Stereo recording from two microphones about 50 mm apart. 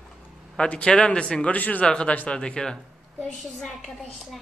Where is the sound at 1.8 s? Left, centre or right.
Centre.